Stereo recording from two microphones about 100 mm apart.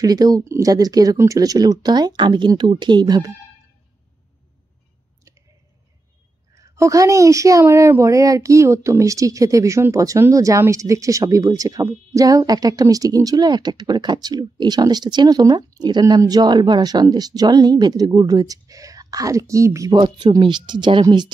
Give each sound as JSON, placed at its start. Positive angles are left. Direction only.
{"t": 0.0, "sound": "speech", "side_deg": -40}
{"t": 6.5, "sound": "speech", "side_deg": -30}
{"t": 19.9, "sound": "speech", "side_deg": -50}